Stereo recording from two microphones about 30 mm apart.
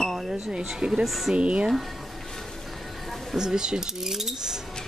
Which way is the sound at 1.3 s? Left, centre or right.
Right.